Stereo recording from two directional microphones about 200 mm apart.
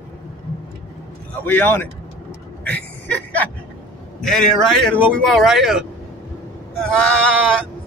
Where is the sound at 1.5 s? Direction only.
10° left (ahead or behind).